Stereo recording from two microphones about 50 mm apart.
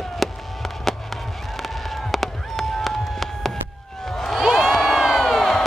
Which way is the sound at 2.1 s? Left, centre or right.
Centre.